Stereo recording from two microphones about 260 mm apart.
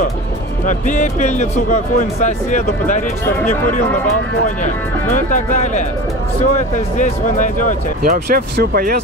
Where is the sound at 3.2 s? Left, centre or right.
Centre.